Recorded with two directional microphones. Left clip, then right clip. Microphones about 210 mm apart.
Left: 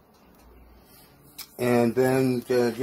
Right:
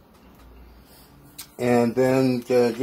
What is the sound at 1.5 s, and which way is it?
Speech, 25° left (ahead or behind).